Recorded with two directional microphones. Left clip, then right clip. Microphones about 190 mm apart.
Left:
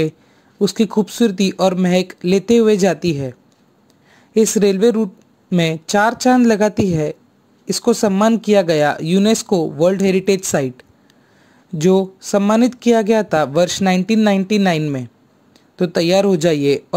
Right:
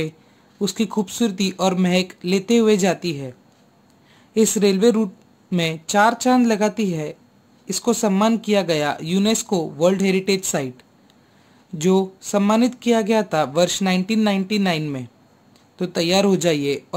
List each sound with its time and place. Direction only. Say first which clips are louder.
0.6 s speech: left 6 dB; 25° left (ahead or behind)